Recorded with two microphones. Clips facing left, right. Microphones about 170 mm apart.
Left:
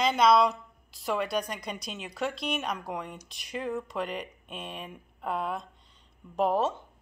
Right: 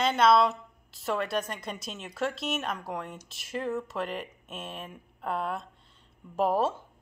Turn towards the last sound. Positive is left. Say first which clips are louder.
# even
turn(degrees=-5)  # may be behind; listen again after turning